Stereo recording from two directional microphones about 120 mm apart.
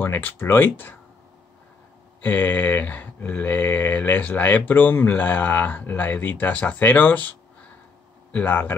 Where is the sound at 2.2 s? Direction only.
15° left (ahead or behind).